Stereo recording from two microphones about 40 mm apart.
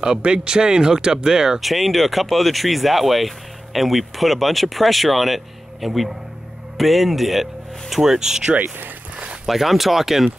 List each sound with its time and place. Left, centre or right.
0.0 s speech: right
1.6 s speech: centre
8.5 s speech: right
9.5 s speech: centre